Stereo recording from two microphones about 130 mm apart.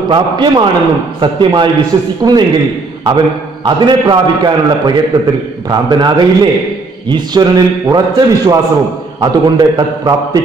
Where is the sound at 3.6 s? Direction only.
35° right (ahead or behind).